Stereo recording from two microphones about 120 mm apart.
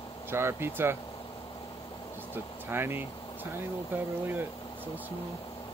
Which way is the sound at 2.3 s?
20° right (ahead or behind).